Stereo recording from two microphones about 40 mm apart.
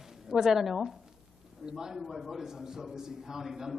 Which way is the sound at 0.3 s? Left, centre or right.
Centre.